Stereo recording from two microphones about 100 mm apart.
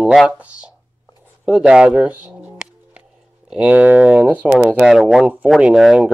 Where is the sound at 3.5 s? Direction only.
15° right (ahead or behind).